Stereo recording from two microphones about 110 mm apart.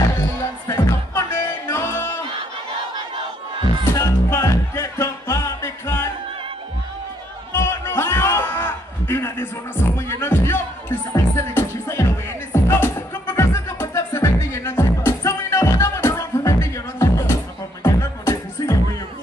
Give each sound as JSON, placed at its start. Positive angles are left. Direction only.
{"t": 0.7, "sound": "music", "side_deg": 25}
{"t": 3.9, "sound": "music", "side_deg": 25}
{"t": 7.5, "sound": "music", "side_deg": 20}